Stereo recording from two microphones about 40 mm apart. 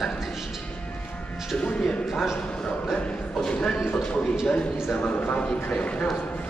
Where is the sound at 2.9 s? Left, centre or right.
Left.